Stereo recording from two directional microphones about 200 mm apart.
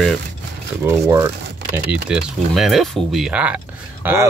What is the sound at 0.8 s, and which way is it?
Speech, 15° right (ahead or behind).